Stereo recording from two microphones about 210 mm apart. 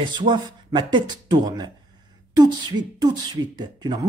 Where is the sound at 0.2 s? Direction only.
20° right (ahead or behind).